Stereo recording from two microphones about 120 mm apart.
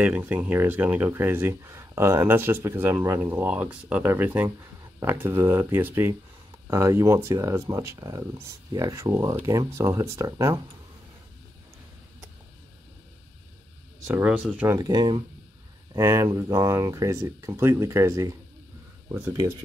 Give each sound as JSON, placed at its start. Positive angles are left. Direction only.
{"t": 0.0, "sound": "speech", "side_deg": -15}
{"t": 14.2, "sound": "speech", "side_deg": -10}
{"t": 14.8, "sound": "speech", "side_deg": -35}
{"t": 15.9, "sound": "speech", "side_deg": -25}